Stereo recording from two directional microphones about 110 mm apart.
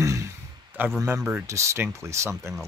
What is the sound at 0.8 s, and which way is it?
A man's voice, 15° right (ahead or behind).